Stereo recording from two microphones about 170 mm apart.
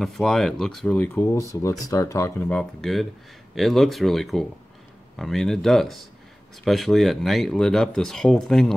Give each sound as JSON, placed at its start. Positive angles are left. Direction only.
{"t": 0.0, "sound": "speech", "side_deg": 0}
{"t": 2.8, "sound": "speech", "side_deg": 0}